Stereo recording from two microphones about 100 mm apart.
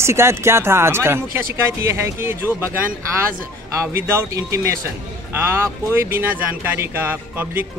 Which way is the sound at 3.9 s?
30° right (ahead or behind).